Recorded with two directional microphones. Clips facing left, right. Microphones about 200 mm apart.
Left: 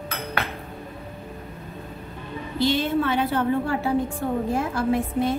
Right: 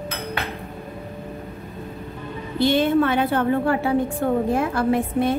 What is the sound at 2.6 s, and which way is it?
A woman's voice, 55° right (ahead or behind).